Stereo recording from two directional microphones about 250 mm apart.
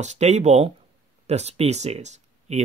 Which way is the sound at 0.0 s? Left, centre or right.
Right.